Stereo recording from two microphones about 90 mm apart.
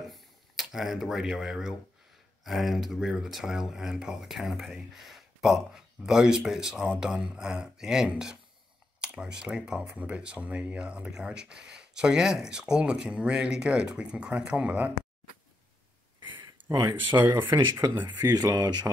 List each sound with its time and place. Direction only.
0.7 s speech: 5° right (ahead or behind)
16.7 s speech: 50° right (ahead or behind)
18.0 s speech: 45° right (ahead or behind)